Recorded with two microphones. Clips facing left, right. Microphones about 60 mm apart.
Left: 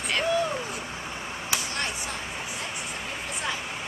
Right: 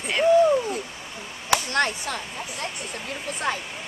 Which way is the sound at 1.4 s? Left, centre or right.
Right.